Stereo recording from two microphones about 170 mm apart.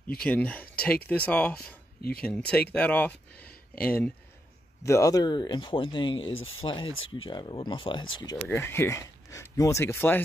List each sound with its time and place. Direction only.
0.2 s speech: 10° left (ahead or behind)
2.0 s speech: 65° left (ahead or behind)
2.2 s speech: 5° left (ahead or behind)
4.8 s speech: 20° left (ahead or behind)
8.5 s speech: 15° left (ahead or behind)